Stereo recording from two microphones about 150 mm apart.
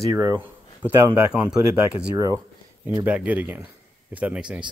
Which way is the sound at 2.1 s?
20° right (ahead or behind).